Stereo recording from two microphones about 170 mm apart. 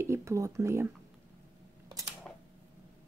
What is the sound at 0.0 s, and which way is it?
Speech, 15° right (ahead or behind).